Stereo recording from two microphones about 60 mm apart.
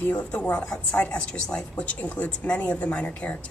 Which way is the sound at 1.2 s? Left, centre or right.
Centre.